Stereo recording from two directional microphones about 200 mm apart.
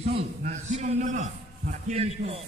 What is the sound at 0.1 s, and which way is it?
A man's voice, 40° right (ahead or behind).